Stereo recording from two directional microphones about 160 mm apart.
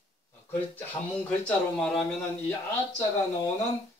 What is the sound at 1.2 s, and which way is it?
Speech, 5° left (ahead or behind).